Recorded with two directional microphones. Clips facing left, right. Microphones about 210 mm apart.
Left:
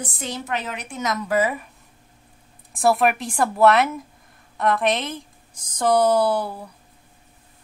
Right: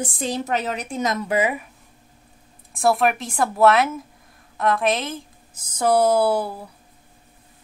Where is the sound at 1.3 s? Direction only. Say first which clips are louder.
Left 1 dB; 15° right (ahead or behind).